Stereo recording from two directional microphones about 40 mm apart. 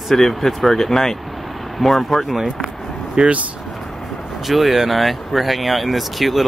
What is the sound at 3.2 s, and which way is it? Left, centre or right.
Speech, right.